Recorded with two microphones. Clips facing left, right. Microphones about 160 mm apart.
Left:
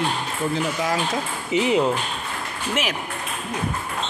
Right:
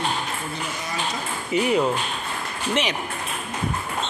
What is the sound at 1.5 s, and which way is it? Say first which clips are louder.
Speech: left 1 dB; 20° left (ahead or behind).